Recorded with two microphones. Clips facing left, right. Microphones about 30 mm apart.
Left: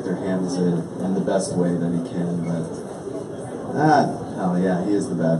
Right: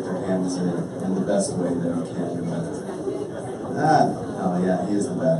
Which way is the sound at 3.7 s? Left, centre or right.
Centre.